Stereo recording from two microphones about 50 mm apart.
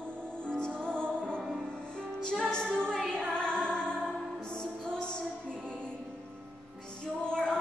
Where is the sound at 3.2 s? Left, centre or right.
Centre.